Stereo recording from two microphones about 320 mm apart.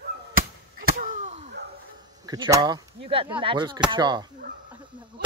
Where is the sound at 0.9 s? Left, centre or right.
Right.